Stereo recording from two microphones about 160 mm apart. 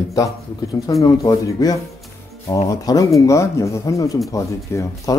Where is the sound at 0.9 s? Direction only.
20° left (ahead or behind).